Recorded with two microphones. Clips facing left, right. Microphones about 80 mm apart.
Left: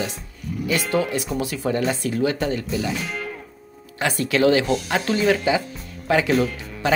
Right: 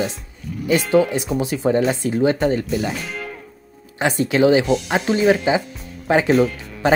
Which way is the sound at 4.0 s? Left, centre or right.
Right.